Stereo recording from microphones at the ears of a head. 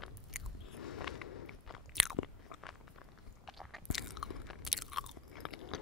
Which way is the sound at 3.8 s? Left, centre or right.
Left.